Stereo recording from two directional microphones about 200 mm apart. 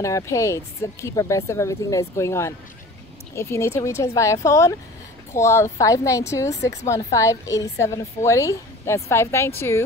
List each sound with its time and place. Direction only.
0.0 s a woman's voice: 15° left (ahead or behind)